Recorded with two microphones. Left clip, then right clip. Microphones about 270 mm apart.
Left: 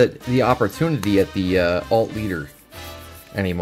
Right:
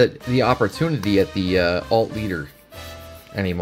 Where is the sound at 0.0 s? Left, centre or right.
Centre.